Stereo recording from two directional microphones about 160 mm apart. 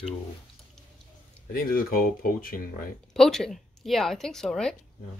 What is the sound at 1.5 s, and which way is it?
Speech, 65° left (ahead or behind).